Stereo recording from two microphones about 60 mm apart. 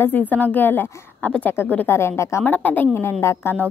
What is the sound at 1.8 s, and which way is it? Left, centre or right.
Speech, left.